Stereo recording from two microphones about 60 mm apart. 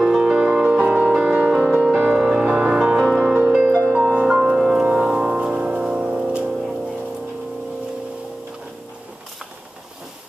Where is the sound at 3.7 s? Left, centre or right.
Right.